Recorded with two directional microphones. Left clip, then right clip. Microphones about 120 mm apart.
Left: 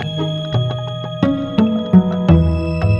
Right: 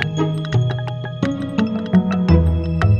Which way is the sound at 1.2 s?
Centre (ahead or behind).